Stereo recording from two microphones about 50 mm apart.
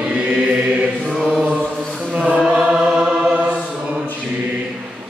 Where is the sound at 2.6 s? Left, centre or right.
Centre.